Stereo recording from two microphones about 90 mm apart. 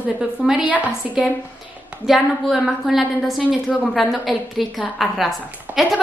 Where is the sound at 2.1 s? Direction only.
Centre (ahead or behind).